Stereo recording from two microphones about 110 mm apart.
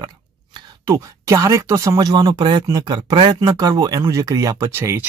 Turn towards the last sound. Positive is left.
turn(degrees=-25)  # may be behind; listen again after turning